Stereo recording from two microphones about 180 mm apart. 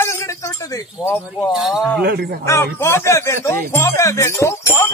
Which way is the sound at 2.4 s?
15° left (ahead or behind).